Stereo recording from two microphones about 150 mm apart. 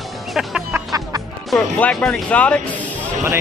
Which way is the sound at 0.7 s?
25° right (ahead or behind).